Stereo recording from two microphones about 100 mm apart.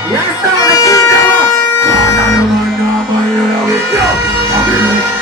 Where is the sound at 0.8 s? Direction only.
35° left (ahead or behind).